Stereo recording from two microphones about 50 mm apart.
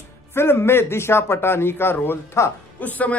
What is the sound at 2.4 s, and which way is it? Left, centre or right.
Speech, left.